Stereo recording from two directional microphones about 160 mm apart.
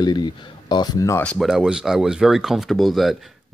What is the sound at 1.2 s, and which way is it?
Speech, 5° left (ahead or behind).